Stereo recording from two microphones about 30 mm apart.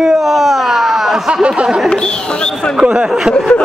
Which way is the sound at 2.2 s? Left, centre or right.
Left.